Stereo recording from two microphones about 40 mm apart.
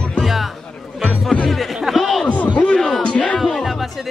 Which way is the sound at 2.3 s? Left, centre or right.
Left.